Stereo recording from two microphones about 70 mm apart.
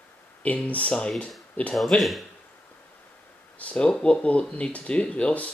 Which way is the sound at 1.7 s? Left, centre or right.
Centre.